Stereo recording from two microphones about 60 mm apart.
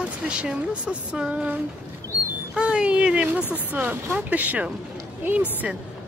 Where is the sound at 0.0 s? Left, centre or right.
Centre.